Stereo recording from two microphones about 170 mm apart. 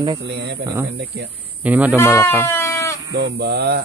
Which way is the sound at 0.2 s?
80° right.